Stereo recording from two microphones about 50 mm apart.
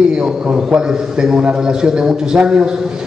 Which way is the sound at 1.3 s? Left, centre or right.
Centre.